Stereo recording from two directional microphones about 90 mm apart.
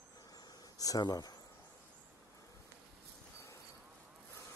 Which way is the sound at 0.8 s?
45° left (ahead or behind).